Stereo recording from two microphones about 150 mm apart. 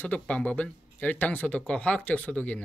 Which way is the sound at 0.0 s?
10° left (ahead or behind).